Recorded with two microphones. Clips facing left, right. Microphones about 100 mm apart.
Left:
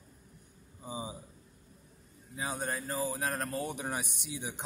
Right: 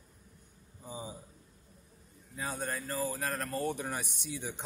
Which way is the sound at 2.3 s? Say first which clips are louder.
Left 1 dB; 10° left (ahead or behind).